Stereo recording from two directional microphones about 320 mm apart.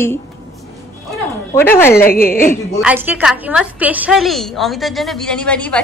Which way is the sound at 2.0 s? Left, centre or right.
Left.